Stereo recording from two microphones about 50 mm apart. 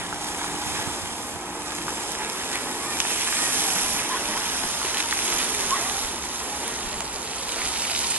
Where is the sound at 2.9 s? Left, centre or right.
Right.